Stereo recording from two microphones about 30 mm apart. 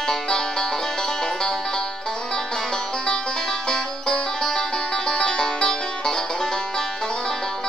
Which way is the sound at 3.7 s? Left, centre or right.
Centre.